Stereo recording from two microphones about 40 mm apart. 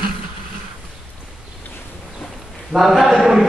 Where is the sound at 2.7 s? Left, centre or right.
Centre.